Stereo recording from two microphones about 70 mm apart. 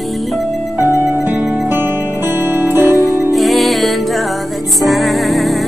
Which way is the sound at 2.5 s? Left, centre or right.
Right.